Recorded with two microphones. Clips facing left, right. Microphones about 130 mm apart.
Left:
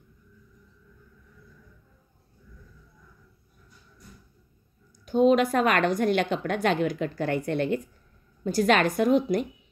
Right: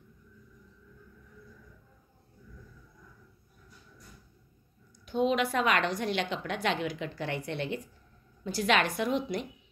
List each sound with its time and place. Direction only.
5.0 s a woman's voice: 45° left (ahead or behind)